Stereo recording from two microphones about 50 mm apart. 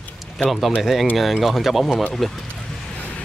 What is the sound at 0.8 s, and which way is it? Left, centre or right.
Speech, centre.